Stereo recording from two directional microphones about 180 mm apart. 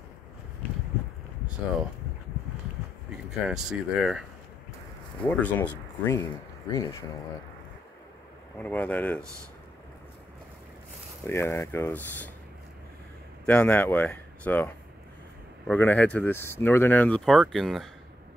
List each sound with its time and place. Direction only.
3.3 s speech: 5° right (ahead or behind)
5.2 s speech: 10° left (ahead or behind)
8.5 s speech: 10° left (ahead or behind)
11.2 s speech: 15° left (ahead or behind)
13.5 s speech: 10° left (ahead or behind)